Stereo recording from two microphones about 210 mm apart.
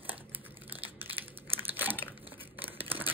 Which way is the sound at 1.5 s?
10° right (ahead or behind).